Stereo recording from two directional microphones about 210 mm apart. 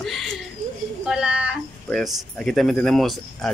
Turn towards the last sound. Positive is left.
turn(degrees=0)  # may be behind; listen again after turning